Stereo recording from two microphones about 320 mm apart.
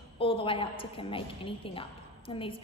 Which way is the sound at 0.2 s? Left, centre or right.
Centre.